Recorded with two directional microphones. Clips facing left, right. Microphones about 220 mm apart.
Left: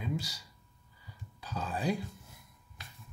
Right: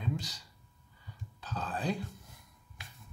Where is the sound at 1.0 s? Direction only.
10° left (ahead or behind).